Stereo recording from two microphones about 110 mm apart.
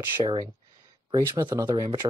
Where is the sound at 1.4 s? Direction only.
30° right (ahead or behind).